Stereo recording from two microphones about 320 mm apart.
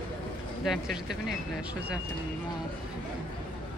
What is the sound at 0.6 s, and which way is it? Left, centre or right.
Speech, centre.